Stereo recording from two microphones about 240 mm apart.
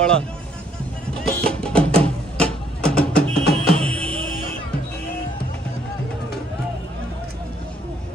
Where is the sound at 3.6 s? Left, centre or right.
Right.